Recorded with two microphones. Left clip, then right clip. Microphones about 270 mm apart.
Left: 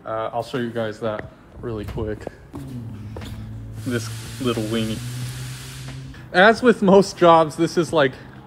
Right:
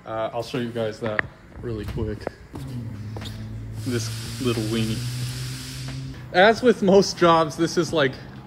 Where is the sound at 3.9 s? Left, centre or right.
Centre.